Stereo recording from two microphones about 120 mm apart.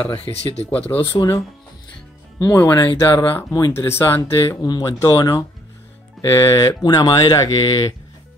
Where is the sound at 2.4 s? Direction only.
20° left (ahead or behind); by 7.4 s 40° left (ahead or behind).